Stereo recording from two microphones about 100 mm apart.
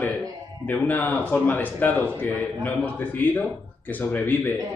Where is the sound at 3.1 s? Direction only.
20° left (ahead or behind).